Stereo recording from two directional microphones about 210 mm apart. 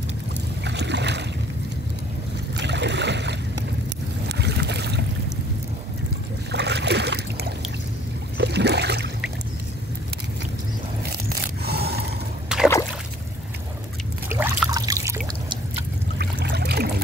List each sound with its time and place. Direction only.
0.7 s boat: 55° right (ahead or behind)
2.5 s a sound: 55° right (ahead or behind)
4.3 s boat: 55° right (ahead or behind)
6.5 s a sound: 55° right (ahead or behind)
8.4 s boat: 55° right (ahead or behind)
11.1 s scrape: 50° right (ahead or behind)
12.5 s a sound: 5° right (ahead or behind)
14.3 s trickle: 10° right (ahead or behind)
16.2 s trickle: 50° right (ahead or behind)